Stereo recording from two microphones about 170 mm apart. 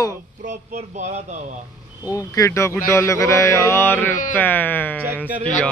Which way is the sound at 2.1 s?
20° left (ahead or behind).